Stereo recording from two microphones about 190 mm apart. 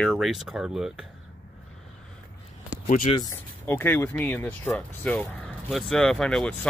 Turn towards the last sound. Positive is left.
turn(degrees=5)  # may be behind; listen again after turning